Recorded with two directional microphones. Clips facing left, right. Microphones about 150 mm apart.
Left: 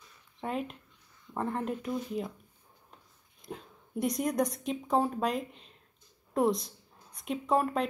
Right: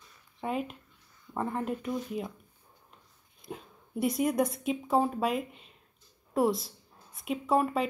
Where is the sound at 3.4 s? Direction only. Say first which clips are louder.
Right 1 dB; 5° right (ahead or behind).